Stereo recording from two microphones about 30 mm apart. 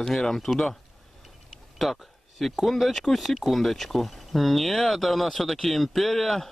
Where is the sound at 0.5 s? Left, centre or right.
Left.